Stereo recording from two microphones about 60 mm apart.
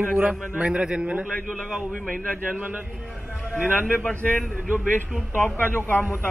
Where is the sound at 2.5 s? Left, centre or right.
Right.